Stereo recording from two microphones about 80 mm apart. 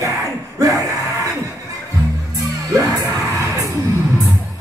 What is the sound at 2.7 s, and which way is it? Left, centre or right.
Music, right.